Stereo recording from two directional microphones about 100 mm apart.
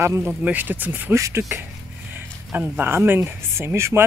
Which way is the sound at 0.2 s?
15° right (ahead or behind).